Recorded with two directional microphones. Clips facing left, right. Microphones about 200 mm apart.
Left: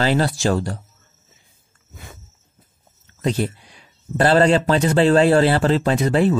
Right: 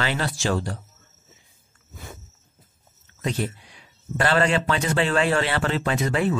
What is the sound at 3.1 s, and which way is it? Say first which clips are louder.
A man's voice: left 5 dB; 35° left (ahead or behind).